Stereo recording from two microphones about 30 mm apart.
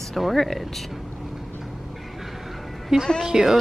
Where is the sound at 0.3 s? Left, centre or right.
Centre.